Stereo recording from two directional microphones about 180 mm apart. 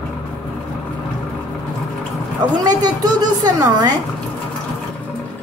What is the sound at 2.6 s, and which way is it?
Speech, 20° right (ahead or behind).